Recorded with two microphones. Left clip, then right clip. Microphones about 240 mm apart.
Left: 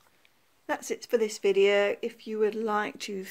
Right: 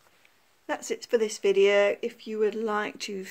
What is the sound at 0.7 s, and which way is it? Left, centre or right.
Speech, centre.